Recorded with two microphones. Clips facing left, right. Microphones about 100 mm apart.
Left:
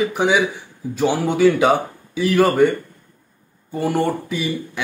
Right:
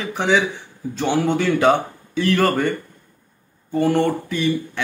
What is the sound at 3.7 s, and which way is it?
Speech, 10° left (ahead or behind).